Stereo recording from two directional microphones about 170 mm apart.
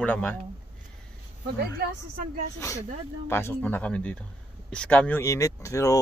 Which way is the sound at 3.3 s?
15° left (ahead or behind).